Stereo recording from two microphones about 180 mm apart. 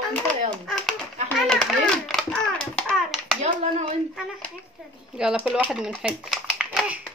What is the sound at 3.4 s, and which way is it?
Speech, 35° right (ahead or behind).